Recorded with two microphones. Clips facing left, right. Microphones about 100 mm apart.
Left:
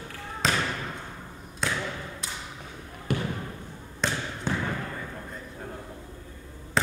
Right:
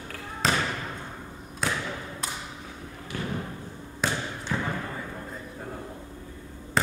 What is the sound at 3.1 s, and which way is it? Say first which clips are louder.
Basketball bounce: left 6 dB; 60° left (ahead or behind).